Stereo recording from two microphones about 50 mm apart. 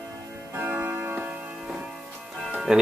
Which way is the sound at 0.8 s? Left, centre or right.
Right.